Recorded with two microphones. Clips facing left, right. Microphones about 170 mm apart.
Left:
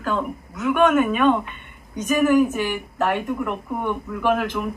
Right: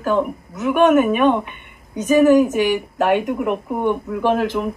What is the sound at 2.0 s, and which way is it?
Speech, 30° right (ahead or behind).